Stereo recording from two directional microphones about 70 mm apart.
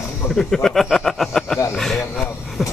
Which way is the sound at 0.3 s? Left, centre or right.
Centre.